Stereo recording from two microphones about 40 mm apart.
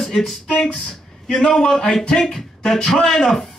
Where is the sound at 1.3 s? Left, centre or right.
Centre.